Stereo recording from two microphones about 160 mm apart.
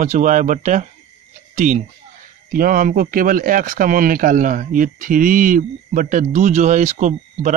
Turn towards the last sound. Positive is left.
turn(degrees=-50)  # may be behind; listen again after turning